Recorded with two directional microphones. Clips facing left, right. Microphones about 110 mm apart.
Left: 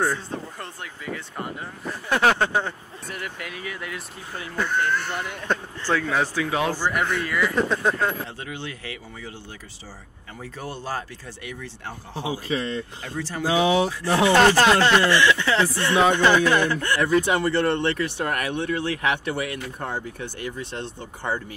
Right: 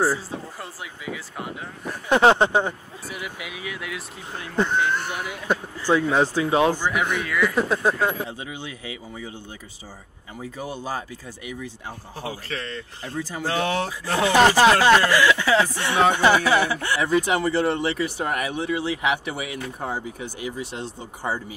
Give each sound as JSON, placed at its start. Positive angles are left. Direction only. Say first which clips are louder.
{"t": 0.0, "sound": "speech", "louder": "right 2 dB", "side_deg": -5}
{"t": 2.0, "sound": "speech", "louder": "right 4 dB", "side_deg": -20}
{"t": 3.1, "sound": "speech", "louder": "even", "side_deg": -5}
{"t": 4.6, "sound": "speech", "louder": "right 2 dB", "side_deg": -20}
{"t": 7.2, "sound": "speech", "louder": "right 1 dB", "side_deg": 0}
{"t": 10.4, "sound": "speech", "louder": "right 2 dB", "side_deg": -10}
{"t": 12.3, "sound": "speech", "louder": "left 6 dB", "side_deg": 15}
{"t": 14.3, "sound": "speech", "louder": "right 2 dB", "side_deg": -10}